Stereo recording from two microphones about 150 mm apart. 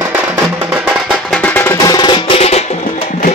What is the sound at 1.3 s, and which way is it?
Music, 10° left (ahead or behind).